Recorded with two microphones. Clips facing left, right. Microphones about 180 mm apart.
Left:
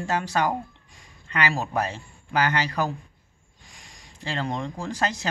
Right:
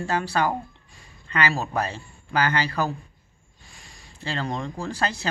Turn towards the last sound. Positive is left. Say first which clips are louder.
# even
turn(degrees=15)  # may be behind; listen again after turning